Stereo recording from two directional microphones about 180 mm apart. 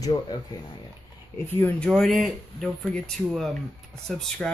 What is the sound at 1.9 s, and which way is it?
Speech, centre (ahead or behind).